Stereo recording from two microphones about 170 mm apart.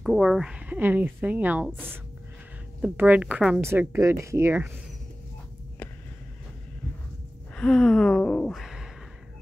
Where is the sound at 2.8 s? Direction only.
5° right (ahead or behind).